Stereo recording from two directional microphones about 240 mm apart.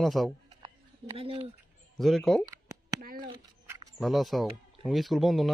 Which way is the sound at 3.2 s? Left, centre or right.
Centre.